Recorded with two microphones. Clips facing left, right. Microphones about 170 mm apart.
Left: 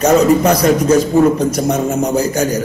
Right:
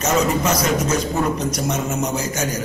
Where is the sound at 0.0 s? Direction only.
60° left (ahead or behind).